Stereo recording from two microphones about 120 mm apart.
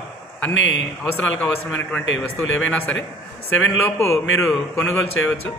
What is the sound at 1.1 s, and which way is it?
A man's voice, 10° left (ahead or behind).